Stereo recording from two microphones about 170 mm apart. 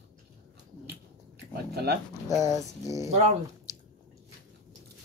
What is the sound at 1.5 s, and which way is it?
Speech, 70° right (ahead or behind).